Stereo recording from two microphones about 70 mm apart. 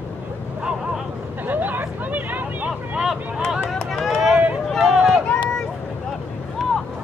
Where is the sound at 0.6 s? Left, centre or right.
Centre.